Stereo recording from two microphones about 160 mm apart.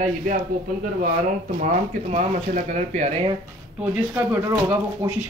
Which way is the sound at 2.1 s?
45° right (ahead or behind).